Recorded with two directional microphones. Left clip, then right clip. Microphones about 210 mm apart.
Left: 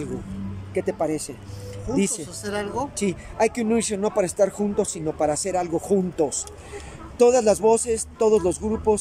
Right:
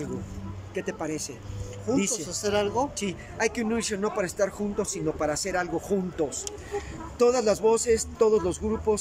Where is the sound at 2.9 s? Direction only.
20° left (ahead or behind).